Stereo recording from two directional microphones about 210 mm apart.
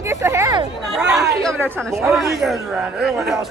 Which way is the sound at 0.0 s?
15° right (ahead or behind).